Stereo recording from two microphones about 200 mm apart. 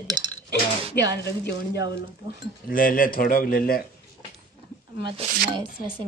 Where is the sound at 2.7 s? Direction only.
45° left (ahead or behind).